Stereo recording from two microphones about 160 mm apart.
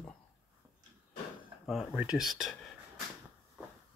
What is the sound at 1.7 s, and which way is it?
Speech, 5° right (ahead or behind).